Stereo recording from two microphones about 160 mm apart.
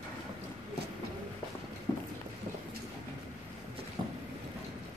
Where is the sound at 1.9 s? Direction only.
25° left (ahead or behind).